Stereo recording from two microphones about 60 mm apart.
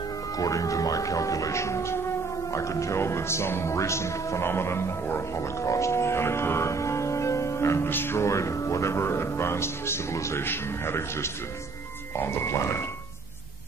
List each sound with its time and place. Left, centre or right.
0.4 s speech: left
7.9 s speech: left